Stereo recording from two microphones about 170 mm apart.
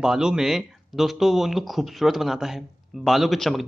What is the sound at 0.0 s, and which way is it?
Speech, 5° right (ahead or behind).